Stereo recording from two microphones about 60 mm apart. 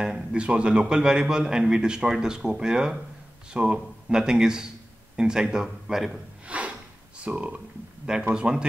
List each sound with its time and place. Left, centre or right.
0.0 s a man's voice: centre
6.4 s snort: right
7.2 s a man's voice: right